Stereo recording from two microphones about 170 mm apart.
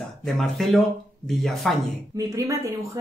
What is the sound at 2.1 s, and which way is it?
Speech, 20° right (ahead or behind).